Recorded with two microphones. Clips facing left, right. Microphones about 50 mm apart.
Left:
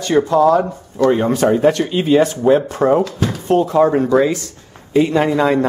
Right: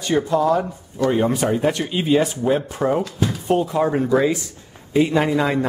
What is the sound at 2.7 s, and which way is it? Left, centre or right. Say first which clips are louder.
Speech: left 6 dB; left.